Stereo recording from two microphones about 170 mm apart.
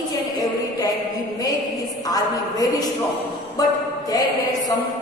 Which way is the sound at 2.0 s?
20° left (ahead or behind).